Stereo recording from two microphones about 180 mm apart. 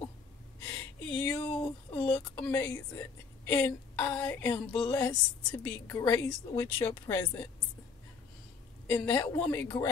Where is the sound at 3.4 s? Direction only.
15° left (ahead or behind).